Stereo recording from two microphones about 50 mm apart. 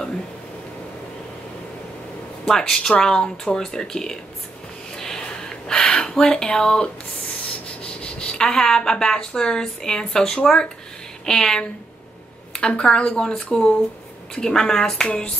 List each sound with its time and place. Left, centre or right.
2.4 s speech: centre
4.9 s a sound: centre
7.6 s speech: left